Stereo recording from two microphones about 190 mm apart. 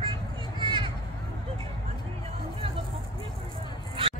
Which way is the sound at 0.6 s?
25° right (ahead or behind).